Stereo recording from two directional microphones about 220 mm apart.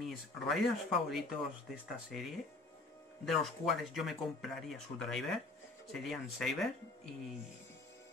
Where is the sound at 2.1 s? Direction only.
Centre (ahead or behind).